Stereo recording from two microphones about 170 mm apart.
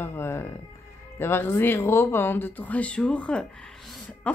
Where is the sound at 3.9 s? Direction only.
10° left (ahead or behind).